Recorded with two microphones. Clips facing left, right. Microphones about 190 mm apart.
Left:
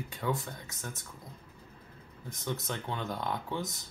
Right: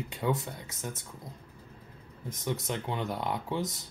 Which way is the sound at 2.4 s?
15° right (ahead or behind).